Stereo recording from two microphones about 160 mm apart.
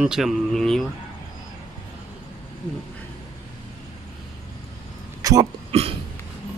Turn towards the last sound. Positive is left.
turn(degrees=-35)  # may be behind; listen again after turning